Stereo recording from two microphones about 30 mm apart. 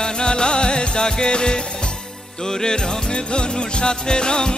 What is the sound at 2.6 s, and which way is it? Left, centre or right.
Music, left.